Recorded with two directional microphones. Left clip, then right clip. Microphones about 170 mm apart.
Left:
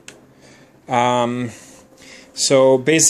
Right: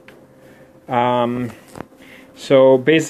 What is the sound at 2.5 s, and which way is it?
Speech, 15° left (ahead or behind).